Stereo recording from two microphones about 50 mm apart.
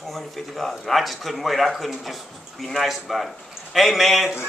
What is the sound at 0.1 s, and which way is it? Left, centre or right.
A man's voice, centre.